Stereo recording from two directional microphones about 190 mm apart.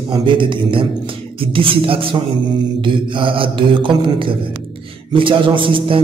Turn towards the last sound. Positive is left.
turn(degrees=-25)  # may be behind; listen again after turning